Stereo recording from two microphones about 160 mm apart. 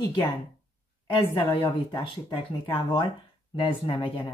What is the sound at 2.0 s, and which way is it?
Speech, 30° left (ahead or behind).